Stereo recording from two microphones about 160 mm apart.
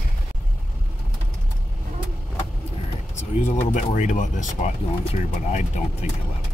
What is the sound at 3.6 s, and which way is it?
Speech, 50° left (ahead or behind).